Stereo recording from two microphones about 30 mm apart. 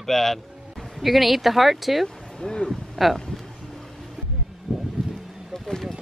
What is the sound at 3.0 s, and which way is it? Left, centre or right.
Speech, centre.